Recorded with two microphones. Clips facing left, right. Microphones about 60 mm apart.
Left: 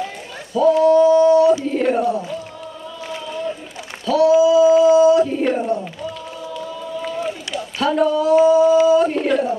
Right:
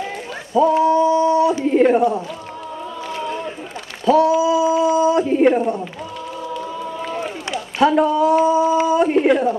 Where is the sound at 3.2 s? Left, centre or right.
Right.